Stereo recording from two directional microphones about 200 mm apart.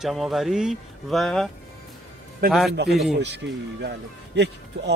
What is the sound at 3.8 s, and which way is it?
Speech, 60° right (ahead or behind).